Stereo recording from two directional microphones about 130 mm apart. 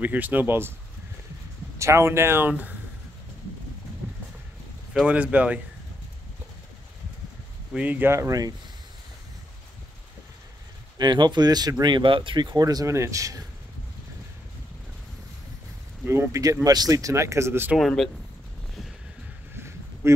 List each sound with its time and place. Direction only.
0.0 s speech: 15° right (ahead or behind)
1.8 s speech: 20° right (ahead or behind)
4.9 s speech: 10° right (ahead or behind)
7.7 s speech: 10° right (ahead or behind); by 8.5 s 25° right (ahead or behind)
11.0 s speech: 35° right (ahead or behind)
16.1 s speech: 20° right (ahead or behind)
17.7 s speech: centre (ahead or behind)
19.5 s a sound: 20° right (ahead or behind)